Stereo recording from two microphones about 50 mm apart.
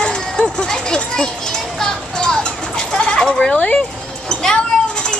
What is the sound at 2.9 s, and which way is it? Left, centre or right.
Sheep, centre.